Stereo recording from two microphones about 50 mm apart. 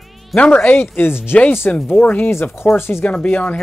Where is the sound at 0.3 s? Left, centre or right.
Centre.